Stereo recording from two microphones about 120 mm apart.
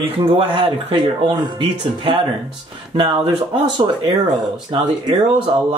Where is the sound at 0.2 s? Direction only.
50° right (ahead or behind).